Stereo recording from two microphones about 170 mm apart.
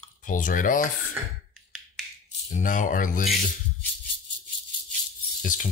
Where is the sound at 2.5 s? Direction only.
50° left (ahead or behind).